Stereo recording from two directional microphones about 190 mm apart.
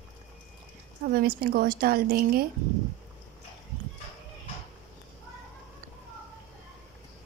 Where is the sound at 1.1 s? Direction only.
50° right (ahead or behind).